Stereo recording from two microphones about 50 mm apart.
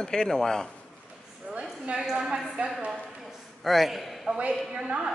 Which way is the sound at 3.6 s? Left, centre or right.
Centre.